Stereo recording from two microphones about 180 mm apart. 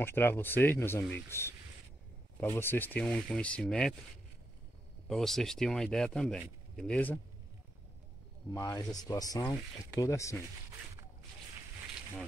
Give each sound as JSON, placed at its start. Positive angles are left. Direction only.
{"t": 0.0, "sound": "speech", "side_deg": 10}
{"t": 5.0, "sound": "speech", "side_deg": 0}
{"t": 8.5, "sound": "speech", "side_deg": 20}